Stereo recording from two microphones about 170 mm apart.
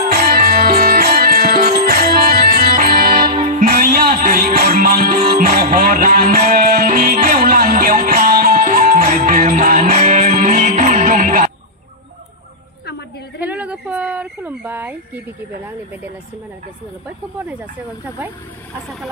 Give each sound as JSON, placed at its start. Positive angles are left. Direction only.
{"t": 0.1, "sound": "music", "side_deg": -65}
{"t": 13.4, "sound": "a sound", "side_deg": -10}
{"t": 17.4, "sound": "speech", "side_deg": -10}